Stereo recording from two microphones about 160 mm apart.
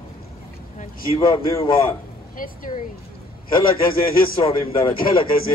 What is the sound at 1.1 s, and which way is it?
Speech, 30° left (ahead or behind).